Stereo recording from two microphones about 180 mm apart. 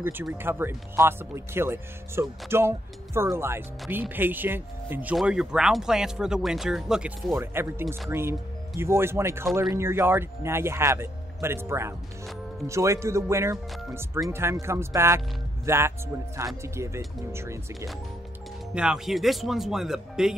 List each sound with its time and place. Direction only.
0.0 s speech: 10° right (ahead or behind)
18.8 s speech: 5° right (ahead or behind)